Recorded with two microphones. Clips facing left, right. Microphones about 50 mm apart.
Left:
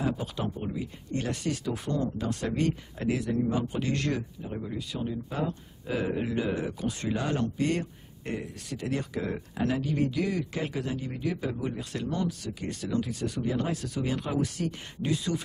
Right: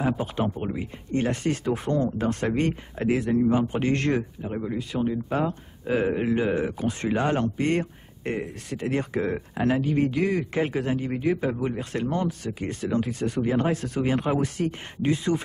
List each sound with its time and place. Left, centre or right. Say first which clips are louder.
0.0 s speech: right 5 dB; right